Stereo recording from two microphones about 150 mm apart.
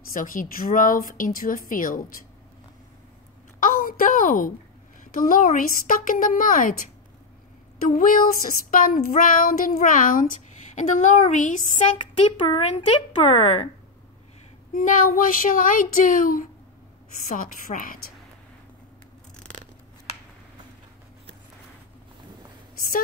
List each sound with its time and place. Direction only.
0.1 s a woman's voice: 65° left (ahead or behind)
3.5 s a sound: 70° left (ahead or behind)
5.1 s child singing: 65° left (ahead or behind)
7.9 s child singing: 65° left (ahead or behind)
10.7 s a sound: 55° left (ahead or behind)
12.3 s speech: 35° left (ahead or behind)
14.7 s child singing: 60° left (ahead or behind)
17.3 s a woman's voice: 65° left (ahead or behind)